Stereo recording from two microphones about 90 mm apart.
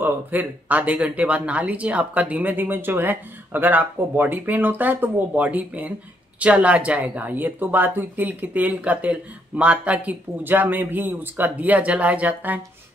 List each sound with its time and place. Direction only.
0.0 s speech: 20° right (ahead or behind)